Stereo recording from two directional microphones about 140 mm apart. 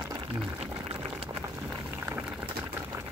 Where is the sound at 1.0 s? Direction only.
40° right (ahead or behind).